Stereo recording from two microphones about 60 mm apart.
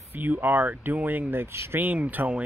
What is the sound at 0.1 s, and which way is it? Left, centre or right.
Speech, right.